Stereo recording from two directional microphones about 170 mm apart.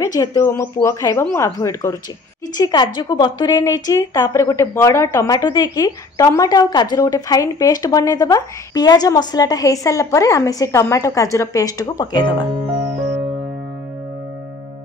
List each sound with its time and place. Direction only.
0.0 s a woman's voice: 20° left (ahead or behind)